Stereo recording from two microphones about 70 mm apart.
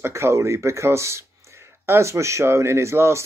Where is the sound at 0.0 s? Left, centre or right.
Right.